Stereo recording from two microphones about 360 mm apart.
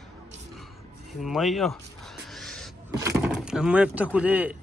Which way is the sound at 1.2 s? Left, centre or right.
Centre.